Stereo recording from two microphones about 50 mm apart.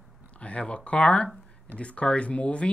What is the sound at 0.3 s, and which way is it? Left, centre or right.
Speech, left.